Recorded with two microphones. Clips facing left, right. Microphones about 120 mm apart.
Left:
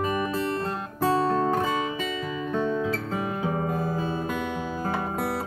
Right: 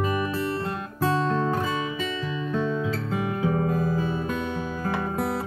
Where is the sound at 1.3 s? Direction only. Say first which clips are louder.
Left 1 dB; 40° left (ahead or behind).